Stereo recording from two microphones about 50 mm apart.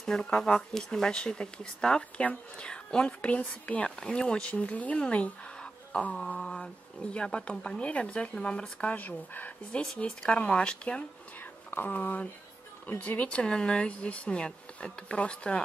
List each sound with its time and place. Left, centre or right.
0.0 s speech: centre
6.1 s speech: centre
8.9 s speech: left
9.7 s speech: left
11.7 s speech: left